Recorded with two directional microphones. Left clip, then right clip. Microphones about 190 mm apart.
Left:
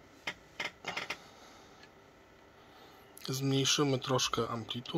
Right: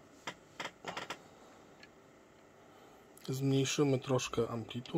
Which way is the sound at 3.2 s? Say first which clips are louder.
Left 2 dB; 15° right (ahead or behind).